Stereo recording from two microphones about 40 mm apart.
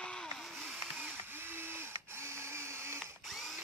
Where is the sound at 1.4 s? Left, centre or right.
Right.